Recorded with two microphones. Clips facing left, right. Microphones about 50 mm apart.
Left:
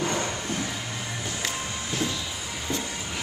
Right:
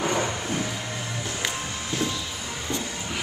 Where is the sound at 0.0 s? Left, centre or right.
Centre.